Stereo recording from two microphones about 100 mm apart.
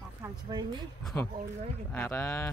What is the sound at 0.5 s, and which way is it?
Speech, 45° right (ahead or behind).